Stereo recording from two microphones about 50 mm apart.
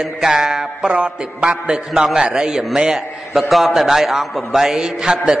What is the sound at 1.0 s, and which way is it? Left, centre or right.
Music, right.